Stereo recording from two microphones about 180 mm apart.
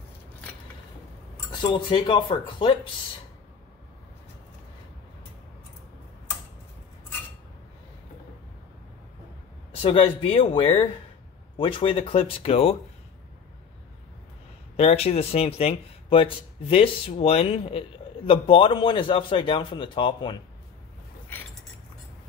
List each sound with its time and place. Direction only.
1.6 s speech: 25° left (ahead or behind)
9.8 s speech: 30° left (ahead or behind)
14.8 s speech: 35° left (ahead or behind)